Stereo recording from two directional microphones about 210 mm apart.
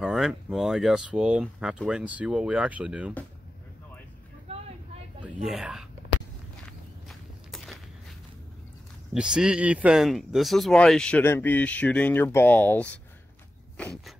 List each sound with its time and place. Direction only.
0.0 s speech: centre (ahead or behind)
4.5 s vehicle: 25° right (ahead or behind)
5.2 s speech: centre (ahead or behind)
7.1 s walk: centre (ahead or behind)
9.1 s speech: 5° right (ahead or behind)
13.7 s a sound: 5° left (ahead or behind)